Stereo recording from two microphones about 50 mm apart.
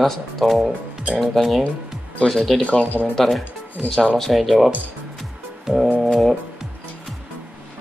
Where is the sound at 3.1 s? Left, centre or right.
Centre.